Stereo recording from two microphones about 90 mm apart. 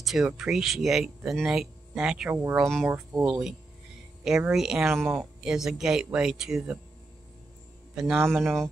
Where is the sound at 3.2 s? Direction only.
5° right (ahead or behind).